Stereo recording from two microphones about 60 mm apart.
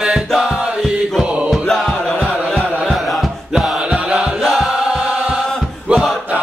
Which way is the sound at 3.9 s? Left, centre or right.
Centre.